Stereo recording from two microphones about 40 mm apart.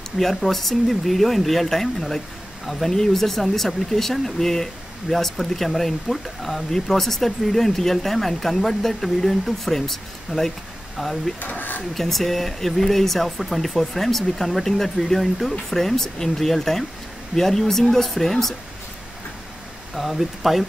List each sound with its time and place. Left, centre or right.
0.2 s speech: centre
11.4 s speech: left
11.9 s speech: centre
19.9 s speech: centre